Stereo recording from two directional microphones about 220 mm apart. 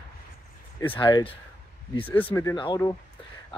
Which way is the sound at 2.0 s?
5° left (ahead or behind).